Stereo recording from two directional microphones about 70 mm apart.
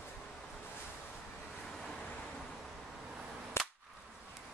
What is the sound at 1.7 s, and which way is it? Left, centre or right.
Vehicle, centre.